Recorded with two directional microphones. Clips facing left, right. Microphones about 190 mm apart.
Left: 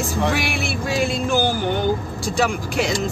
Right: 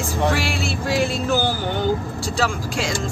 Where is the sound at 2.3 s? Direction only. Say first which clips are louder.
Left 3 dB; 15° left (ahead or behind).